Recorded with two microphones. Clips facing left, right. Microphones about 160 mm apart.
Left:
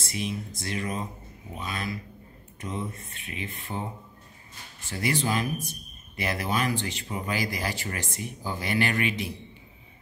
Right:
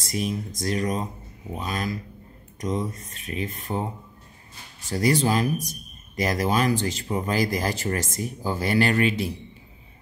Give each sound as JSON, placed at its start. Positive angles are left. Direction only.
{"t": 0.0, "sound": "speech", "side_deg": -40}
{"t": 4.8, "sound": "speech", "side_deg": -40}